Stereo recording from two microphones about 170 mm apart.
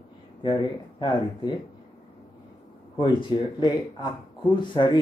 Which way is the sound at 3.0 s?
30° left (ahead or behind).